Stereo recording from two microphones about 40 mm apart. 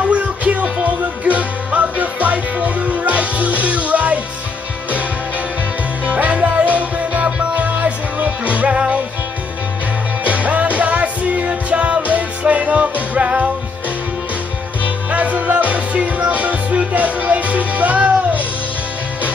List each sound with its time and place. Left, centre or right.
0.1 s music: right
6.0 s music: right
10.2 s music: right
15.0 s music: right